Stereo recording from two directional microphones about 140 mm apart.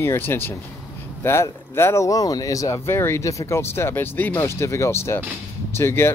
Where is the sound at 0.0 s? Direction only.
15° left (ahead or behind).